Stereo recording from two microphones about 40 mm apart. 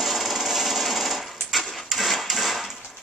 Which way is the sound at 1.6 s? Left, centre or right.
Centre.